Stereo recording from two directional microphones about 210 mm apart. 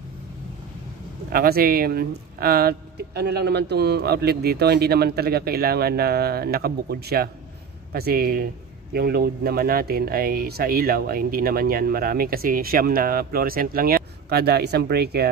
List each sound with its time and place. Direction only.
1.3 s speech: 45° right (ahead or behind)